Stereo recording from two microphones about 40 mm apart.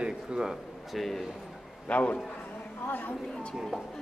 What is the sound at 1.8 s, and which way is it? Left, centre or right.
Speech, left.